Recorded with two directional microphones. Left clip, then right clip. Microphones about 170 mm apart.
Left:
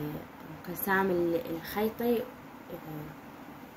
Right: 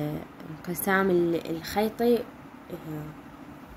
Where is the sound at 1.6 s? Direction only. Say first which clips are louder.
Right 5 dB; 60° right (ahead or behind).